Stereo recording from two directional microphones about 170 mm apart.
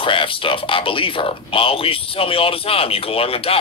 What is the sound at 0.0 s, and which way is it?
Speech, 30° left (ahead or behind).